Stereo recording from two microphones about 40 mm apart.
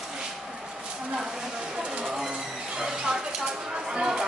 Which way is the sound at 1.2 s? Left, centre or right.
Centre.